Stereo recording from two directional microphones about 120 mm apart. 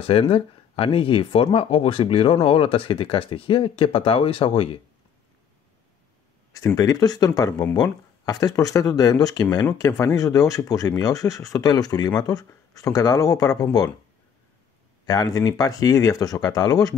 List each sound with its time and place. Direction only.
0.0 s speech: 50° left (ahead or behind)
6.5 s speech: 25° left (ahead or behind)
15.0 s speech: 30° left (ahead or behind)